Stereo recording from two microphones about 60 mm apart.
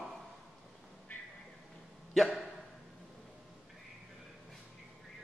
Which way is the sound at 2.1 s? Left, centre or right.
Centre.